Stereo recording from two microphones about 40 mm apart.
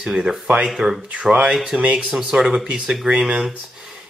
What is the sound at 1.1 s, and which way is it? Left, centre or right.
Speech, right.